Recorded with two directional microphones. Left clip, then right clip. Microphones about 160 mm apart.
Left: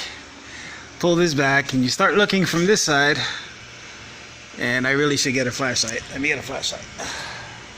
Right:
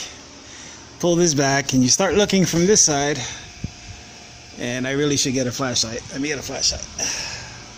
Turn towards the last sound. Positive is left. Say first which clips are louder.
# right 3 dB
turn(degrees=-20)  # may be behind; listen again after turning